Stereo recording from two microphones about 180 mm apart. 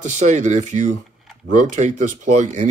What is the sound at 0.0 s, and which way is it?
Speech, 40° right (ahead or behind).